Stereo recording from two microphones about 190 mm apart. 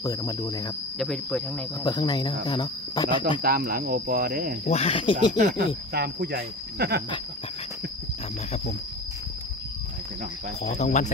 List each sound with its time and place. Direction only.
0.0 s speech: 20° left (ahead or behind)
0.9 s speech: 5° left (ahead or behind)
1.8 s speech: 20° left (ahead or behind)
3.4 s speech: 50° right (ahead or behind)
4.6 s speech: 30° left (ahead or behind)
5.9 s speech: 55° right (ahead or behind)
10.6 s speech: 35° left (ahead or behind)